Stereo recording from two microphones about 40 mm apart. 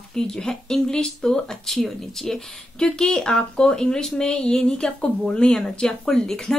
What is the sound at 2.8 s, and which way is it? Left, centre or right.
Speech, centre.